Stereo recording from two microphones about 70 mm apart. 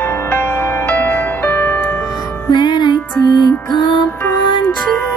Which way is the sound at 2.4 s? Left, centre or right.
Left.